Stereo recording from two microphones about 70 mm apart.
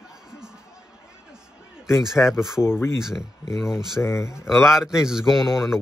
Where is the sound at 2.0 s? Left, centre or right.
Centre.